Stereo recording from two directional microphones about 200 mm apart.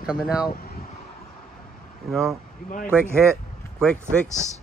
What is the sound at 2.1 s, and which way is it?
Speech, centre (ahead or behind).